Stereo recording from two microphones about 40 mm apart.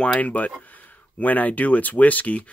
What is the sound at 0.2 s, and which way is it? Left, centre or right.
Speech, left.